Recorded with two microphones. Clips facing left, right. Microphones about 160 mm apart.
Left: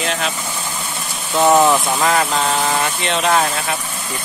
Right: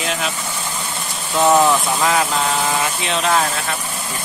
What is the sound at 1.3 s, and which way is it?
Speech, 5° left (ahead or behind).